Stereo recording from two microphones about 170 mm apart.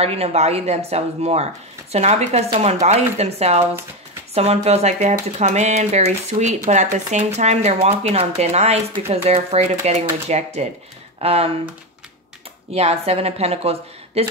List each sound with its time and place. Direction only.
0.0 s speech: 35° right (ahead or behind)
12.7 s speech: 35° right (ahead or behind)